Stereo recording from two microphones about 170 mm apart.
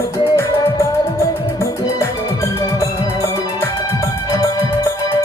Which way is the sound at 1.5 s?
15° left (ahead or behind).